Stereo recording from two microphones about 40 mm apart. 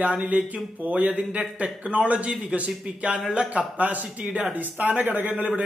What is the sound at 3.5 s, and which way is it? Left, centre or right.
A man's voice, right.